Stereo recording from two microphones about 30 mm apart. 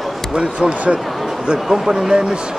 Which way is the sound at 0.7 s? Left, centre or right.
Right.